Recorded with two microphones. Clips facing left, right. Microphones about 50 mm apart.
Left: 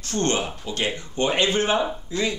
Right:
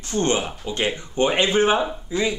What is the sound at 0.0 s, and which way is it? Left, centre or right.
Speech, centre.